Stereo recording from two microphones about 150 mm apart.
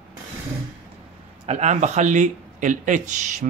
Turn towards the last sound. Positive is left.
turn(degrees=-55)  # may be behind; listen again after turning